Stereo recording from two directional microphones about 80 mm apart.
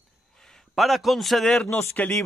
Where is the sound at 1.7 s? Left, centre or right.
Centre.